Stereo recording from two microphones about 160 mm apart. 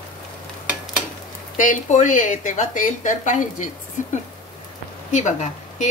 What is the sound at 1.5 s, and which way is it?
Speech, 55° left (ahead or behind).